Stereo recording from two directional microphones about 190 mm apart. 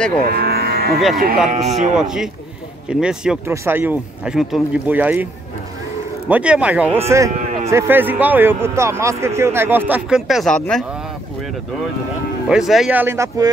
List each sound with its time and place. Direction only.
0.3 s cattle: 55° right (ahead or behind)
1.5 s speech: 40° right (ahead or behind)
2.0 s a man's voice: centre (ahead or behind)
12.4 s a man's voice: centre (ahead or behind)